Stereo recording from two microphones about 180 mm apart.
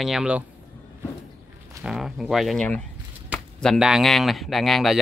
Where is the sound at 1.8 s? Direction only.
Centre (ahead or behind).